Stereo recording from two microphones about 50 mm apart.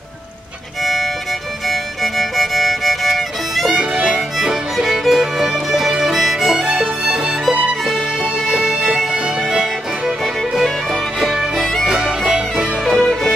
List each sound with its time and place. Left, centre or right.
1.7 s music: centre
3.7 s music: centre
6.7 s music: centre
13.0 s music: centre